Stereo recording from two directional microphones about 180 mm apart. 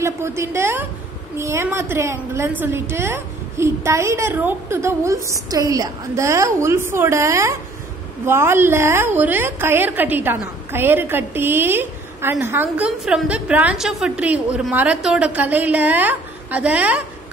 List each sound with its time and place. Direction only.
0.0 s a woman's voice: 15° right (ahead or behind)